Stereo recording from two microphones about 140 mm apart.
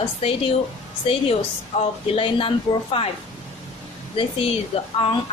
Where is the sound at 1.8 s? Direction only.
40° left (ahead or behind).